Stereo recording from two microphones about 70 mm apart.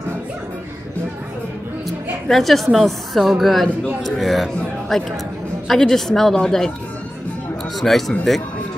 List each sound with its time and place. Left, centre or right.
2.2 s a woman's voice: centre
7.8 s a woman's voice: centre